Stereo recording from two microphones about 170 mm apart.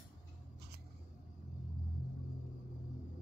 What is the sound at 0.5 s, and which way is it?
Scissors, 70° right (ahead or behind).